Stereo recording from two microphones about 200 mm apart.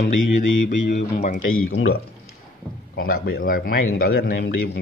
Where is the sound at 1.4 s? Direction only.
90° left.